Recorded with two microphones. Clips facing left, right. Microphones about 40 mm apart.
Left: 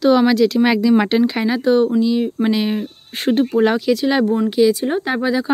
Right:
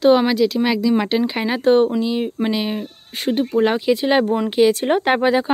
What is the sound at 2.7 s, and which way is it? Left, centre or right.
Speech, centre.